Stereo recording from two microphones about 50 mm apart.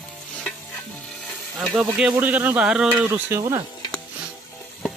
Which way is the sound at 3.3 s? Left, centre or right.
Right.